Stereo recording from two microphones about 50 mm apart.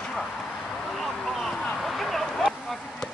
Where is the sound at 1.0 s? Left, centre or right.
Centre.